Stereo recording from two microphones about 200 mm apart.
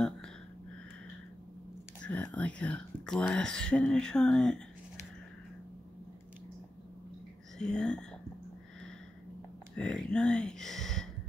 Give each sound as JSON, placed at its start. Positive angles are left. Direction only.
{"t": 2.0, "sound": "speech", "side_deg": 5}
{"t": 7.5, "sound": "speech", "side_deg": 5}
{"t": 9.8, "sound": "speech", "side_deg": 5}